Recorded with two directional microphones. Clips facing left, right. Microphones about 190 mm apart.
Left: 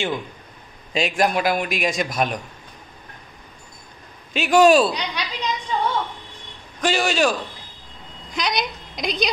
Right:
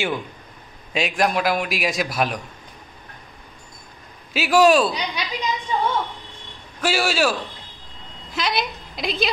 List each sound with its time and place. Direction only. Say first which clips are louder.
0.9 s a man's voice: left 1 dB; centre (ahead or behind)
4.3 s a man's voice: left 1 dB; 5° right (ahead or behind)
4.9 s a woman's voice: right 1 dB; 15° right (ahead or behind)
6.8 s a man's voice: left 1 dB; 5° right (ahead or behind)